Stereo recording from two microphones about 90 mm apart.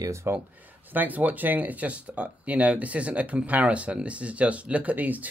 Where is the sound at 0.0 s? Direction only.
30° right (ahead or behind).